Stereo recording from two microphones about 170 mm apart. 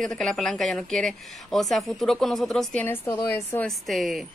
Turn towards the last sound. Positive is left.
turn(degrees=0)  # may be behind; listen again after turning